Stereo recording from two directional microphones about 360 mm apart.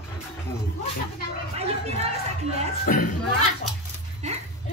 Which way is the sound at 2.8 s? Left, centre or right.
Left.